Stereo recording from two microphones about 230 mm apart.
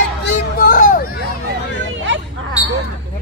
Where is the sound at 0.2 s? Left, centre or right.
Left.